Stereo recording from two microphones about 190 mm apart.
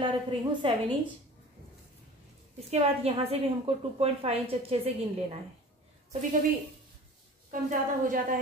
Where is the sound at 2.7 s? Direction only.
35° right (ahead or behind).